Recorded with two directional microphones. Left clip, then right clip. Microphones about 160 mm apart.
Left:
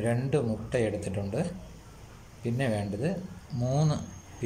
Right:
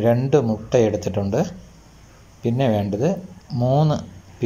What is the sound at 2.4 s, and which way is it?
Speech, 20° right (ahead or behind).